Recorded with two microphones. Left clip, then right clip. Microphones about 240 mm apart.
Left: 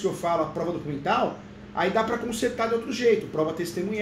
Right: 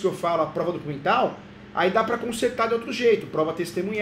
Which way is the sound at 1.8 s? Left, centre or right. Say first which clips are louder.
Right 3 dB; centre.